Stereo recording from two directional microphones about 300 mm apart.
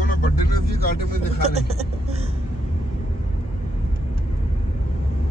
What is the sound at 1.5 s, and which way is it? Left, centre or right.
Speech, right.